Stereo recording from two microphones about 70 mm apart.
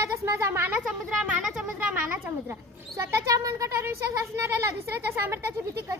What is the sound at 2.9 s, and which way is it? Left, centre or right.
Speech, right.